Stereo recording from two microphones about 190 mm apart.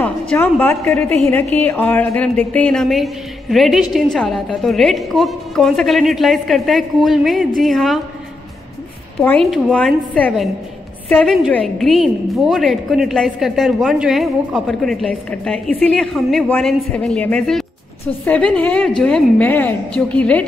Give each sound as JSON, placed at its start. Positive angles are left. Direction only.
{"t": 0.0, "sound": "a woman's voice", "side_deg": 10}
{"t": 9.2, "sound": "a woman's voice", "side_deg": 5}